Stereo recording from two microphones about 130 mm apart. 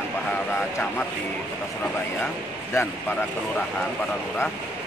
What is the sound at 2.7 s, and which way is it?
Speech, 20° left (ahead or behind).